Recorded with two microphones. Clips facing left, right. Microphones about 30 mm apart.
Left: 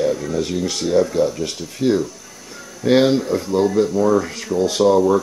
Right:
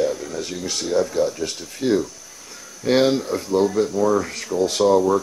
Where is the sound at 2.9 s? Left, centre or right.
Left.